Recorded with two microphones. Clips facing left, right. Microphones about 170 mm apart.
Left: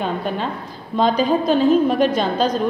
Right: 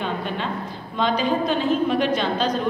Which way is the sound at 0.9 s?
40° left (ahead or behind).